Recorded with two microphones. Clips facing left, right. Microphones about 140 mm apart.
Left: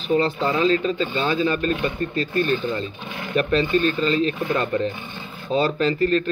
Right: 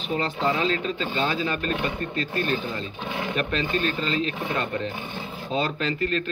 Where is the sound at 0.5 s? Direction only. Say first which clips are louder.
Left 3 dB; 45° left (ahead or behind).